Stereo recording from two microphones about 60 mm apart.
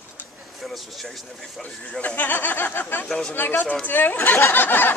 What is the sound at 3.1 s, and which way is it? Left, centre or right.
Speech, centre.